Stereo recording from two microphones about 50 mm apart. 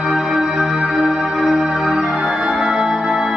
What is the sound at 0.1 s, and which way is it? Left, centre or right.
Music, centre.